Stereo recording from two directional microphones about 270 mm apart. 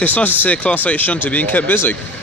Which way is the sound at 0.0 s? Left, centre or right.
Centre.